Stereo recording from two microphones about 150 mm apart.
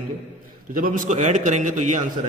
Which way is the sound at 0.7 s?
65° right (ahead or behind).